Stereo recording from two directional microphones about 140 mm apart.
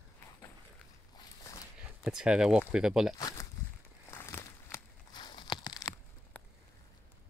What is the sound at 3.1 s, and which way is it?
Speech, 25° left (ahead or behind).